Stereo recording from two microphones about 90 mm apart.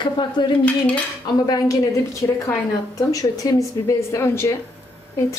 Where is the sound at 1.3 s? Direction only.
45° left (ahead or behind); by 4.6 s 30° left (ahead or behind).